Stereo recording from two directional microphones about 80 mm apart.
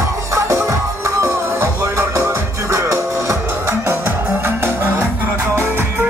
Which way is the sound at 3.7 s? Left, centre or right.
Right.